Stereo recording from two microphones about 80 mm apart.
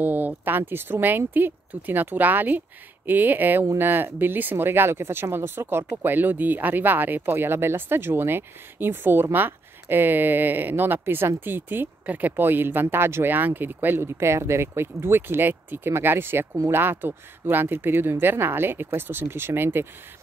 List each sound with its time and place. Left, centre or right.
0.0 s speech: right